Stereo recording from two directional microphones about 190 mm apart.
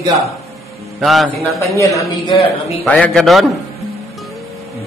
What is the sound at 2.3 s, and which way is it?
A man's voice, centre (ahead or behind).